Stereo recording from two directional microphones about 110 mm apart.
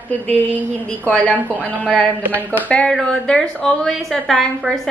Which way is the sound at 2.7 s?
5° left (ahead or behind).